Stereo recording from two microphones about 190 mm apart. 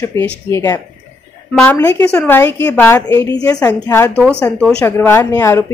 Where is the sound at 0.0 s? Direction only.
15° left (ahead or behind).